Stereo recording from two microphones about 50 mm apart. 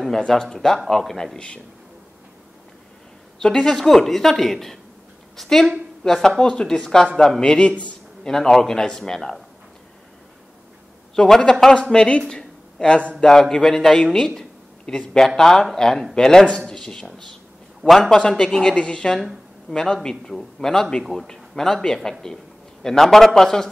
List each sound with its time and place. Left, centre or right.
0.3 s a man's voice: centre
3.3 s a woman's voice: centre
8.3 s a man's voice: centre
11.1 s a man's voice: centre
12.3 s a sound: centre
13.2 s a man's voice: centre
21.0 s a woman's voice: centre
21.3 s a man's voice: centre